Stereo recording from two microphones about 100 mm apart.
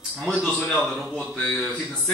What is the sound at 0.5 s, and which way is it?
Speech, 5° left (ahead or behind).